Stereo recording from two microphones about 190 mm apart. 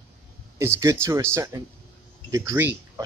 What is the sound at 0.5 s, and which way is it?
Speech, 15° right (ahead or behind).